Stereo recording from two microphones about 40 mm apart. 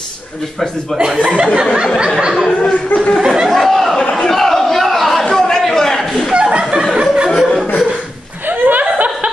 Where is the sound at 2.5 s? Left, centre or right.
Left.